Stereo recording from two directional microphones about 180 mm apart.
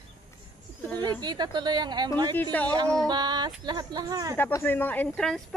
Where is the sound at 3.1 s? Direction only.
25° right (ahead or behind).